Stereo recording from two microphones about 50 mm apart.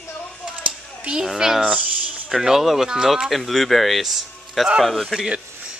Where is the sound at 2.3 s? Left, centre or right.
Centre.